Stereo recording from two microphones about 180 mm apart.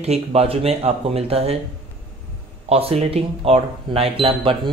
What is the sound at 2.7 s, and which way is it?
Speech, 35° right (ahead or behind).